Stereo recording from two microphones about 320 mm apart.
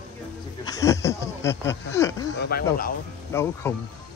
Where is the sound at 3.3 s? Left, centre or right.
Centre.